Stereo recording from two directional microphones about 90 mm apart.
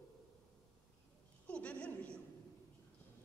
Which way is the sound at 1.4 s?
15° left (ahead or behind).